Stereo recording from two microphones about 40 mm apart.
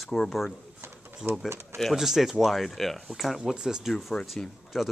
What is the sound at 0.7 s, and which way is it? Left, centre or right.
Bird, right.